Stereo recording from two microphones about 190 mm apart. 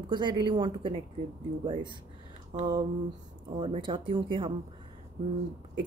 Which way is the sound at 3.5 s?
25° right (ahead or behind).